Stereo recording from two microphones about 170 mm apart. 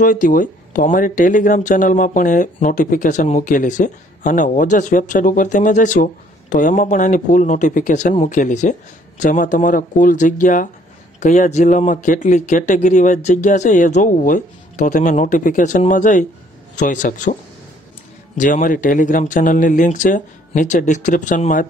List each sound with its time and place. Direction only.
0.0 s speech: 55° left (ahead or behind)
18.4 s speech: 50° left (ahead or behind)